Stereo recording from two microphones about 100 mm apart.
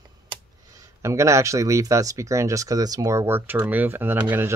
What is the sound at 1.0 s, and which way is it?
Speech, 30° right (ahead or behind).